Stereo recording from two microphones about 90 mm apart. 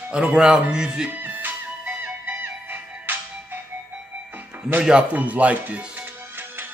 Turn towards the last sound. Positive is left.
turn(degrees=-15)  # may be behind; listen again after turning